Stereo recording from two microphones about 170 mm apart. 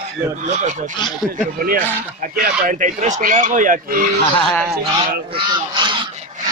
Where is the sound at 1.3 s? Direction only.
55° right (ahead or behind).